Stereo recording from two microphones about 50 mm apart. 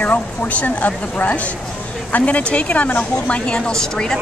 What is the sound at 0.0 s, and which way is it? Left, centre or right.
A woman's voice, left.